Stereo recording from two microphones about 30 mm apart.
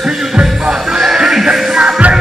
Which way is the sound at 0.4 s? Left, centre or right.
Right.